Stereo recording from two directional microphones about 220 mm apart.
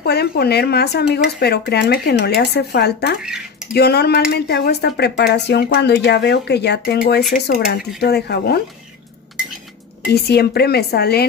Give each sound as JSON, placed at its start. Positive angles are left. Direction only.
{"t": 0.0, "sound": "speech", "side_deg": 45}
{"t": 3.2, "sound": "speech", "side_deg": -5}
{"t": 3.7, "sound": "speech", "side_deg": 45}
{"t": 10.2, "sound": "speech", "side_deg": 45}